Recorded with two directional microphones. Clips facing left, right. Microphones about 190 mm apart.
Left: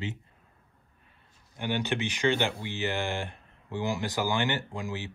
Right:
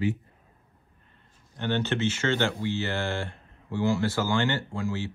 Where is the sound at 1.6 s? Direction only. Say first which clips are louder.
Right 3 dB; 10° left (ahead or behind).